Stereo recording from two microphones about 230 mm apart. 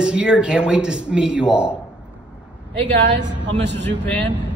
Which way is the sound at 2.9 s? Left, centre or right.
Right.